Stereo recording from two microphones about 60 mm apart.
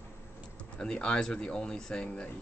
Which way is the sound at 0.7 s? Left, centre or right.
Centre.